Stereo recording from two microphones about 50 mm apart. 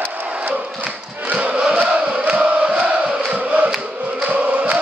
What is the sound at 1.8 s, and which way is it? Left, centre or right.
Chant, right.